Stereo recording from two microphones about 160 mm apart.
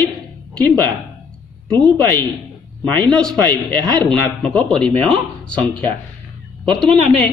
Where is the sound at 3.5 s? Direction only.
25° right (ahead or behind).